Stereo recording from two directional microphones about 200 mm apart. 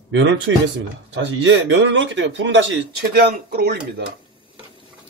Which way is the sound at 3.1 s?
50° right (ahead or behind).